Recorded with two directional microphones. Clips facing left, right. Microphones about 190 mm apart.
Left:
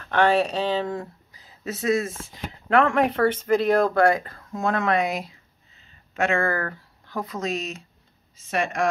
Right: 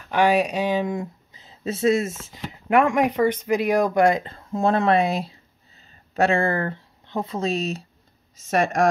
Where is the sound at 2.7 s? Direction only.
15° right (ahead or behind); by 7.8 s 30° right (ahead or behind).